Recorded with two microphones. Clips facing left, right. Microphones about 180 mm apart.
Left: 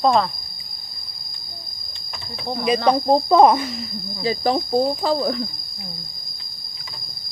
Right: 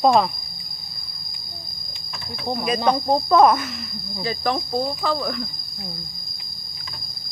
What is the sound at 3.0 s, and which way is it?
Speech, 30° left (ahead or behind).